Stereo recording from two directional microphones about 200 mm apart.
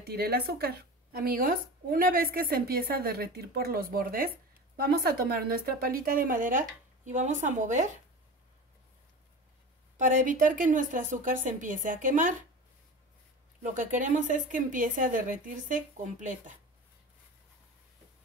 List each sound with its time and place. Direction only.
0.0 s a woman's voice: 50° right (ahead or behind)
9.9 s a woman's voice: 40° right (ahead or behind)
13.6 s a woman's voice: 40° right (ahead or behind)